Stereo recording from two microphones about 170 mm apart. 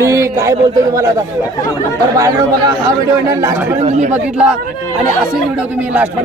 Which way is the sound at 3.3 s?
15° right (ahead or behind).